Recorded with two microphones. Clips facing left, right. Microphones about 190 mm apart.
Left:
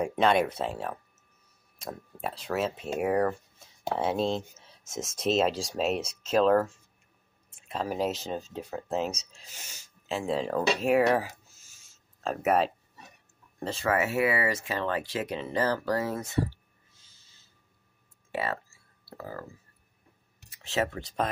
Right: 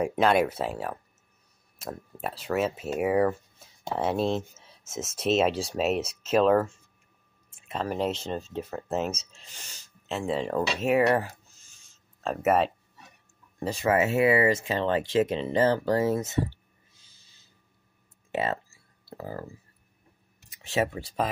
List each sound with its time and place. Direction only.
0.0 s speech: 5° right (ahead or behind)
13.6 s speech: 15° right (ahead or behind)
13.9 s speech: 25° right (ahead or behind)
18.3 s speech: 20° right (ahead or behind)
19.0 s a sound: 20° right (ahead or behind)
20.6 s speech: 15° right (ahead or behind)